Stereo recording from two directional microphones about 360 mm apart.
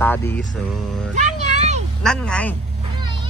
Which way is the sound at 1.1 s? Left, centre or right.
Centre.